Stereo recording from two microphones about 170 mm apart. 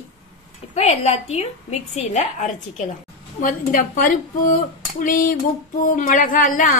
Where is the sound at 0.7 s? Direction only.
40° left (ahead or behind).